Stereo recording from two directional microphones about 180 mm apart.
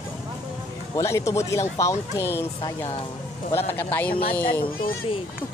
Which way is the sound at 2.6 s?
30° left (ahead or behind).